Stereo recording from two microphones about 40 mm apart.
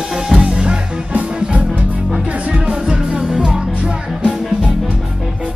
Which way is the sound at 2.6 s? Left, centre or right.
Right.